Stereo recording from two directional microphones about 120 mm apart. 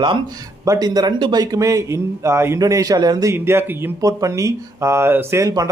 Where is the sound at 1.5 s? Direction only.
25° right (ahead or behind).